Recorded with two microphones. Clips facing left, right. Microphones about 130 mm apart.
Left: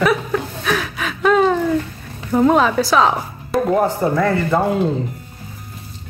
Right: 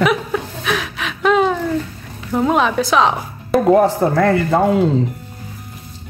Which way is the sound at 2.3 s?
Centre (ahead or behind).